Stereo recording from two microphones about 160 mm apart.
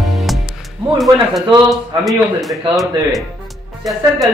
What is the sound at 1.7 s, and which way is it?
A man's voice, centre (ahead or behind).